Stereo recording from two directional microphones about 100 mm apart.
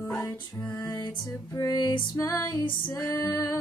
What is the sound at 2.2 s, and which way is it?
Female singing, 40° left (ahead or behind).